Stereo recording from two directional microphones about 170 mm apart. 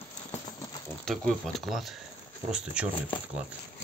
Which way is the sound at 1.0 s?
5° left (ahead or behind).